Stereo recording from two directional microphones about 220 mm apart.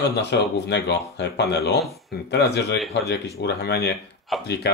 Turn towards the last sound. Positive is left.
turn(degrees=50)  # may be behind; listen again after turning